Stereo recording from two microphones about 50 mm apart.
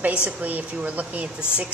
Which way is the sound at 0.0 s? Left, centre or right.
Right.